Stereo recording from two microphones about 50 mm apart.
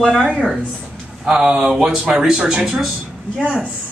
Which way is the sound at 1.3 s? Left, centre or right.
Centre.